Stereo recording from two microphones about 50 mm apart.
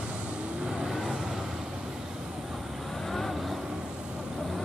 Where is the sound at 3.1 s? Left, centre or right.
Centre.